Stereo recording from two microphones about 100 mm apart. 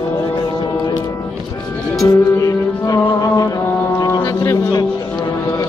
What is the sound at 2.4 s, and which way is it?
Music, 35° left (ahead or behind).